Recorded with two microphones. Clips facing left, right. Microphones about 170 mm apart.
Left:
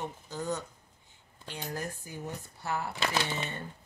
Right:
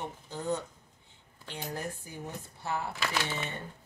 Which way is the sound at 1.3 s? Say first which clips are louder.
Even; 15° left (ahead or behind).